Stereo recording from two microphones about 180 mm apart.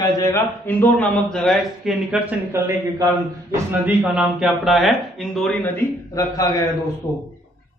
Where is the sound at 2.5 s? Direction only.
15° right (ahead or behind).